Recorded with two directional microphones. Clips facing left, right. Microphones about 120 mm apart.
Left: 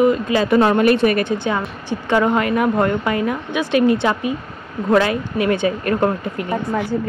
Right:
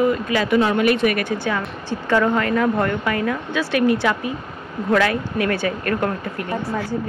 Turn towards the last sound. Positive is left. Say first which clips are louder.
# left 3 dB
turn(degrees=20)  # may be behind; listen again after turning